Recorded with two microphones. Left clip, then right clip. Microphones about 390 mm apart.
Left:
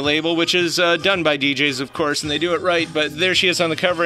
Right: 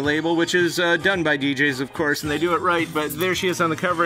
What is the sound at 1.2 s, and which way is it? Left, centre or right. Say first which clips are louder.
Speech: left 2 dB; left.